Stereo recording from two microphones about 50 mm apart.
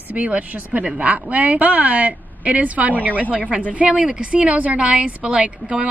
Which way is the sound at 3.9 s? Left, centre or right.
Centre.